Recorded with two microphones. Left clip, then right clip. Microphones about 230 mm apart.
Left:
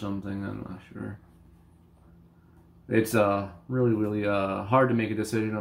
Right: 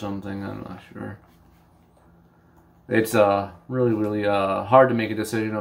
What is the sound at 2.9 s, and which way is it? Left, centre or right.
Speech, centre.